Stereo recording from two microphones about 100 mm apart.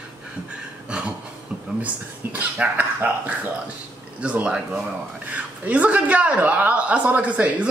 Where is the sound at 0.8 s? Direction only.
10° right (ahead or behind).